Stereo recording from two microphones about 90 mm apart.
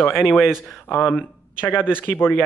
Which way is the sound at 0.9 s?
25° left (ahead or behind).